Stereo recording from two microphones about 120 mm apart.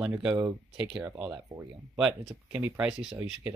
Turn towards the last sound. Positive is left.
turn(degrees=-5)  # may be behind; listen again after turning